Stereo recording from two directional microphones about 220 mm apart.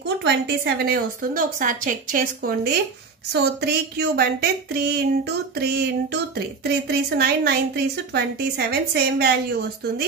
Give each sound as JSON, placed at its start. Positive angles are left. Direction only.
{"t": 0.2, "sound": "a woman's voice", "side_deg": -50}
{"t": 6.3, "sound": "a woman's voice", "side_deg": -45}